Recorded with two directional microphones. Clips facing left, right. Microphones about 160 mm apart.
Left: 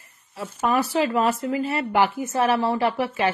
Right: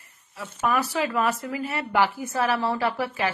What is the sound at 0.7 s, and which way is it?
Speech, 25° left (ahead or behind).